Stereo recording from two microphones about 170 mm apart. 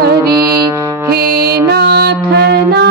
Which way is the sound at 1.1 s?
65° right (ahead or behind).